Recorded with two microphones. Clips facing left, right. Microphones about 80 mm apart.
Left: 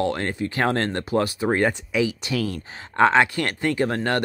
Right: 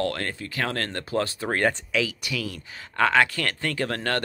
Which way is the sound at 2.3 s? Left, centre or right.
Left.